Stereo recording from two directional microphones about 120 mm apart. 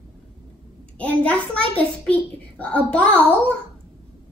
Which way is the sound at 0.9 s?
10° left (ahead or behind).